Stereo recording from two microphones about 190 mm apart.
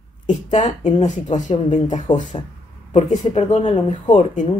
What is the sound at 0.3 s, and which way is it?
Speech, 40° left (ahead or behind).